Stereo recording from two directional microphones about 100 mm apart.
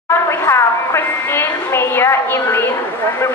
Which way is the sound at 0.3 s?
25° left (ahead or behind).